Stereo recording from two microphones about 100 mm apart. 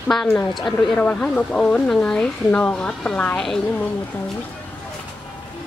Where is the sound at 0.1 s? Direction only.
5° left (ahead or behind).